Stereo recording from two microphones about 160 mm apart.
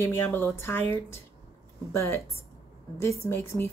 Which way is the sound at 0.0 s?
15° left (ahead or behind).